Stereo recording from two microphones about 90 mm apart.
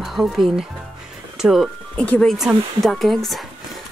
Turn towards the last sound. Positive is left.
turn(degrees=0)  # may be behind; listen again after turning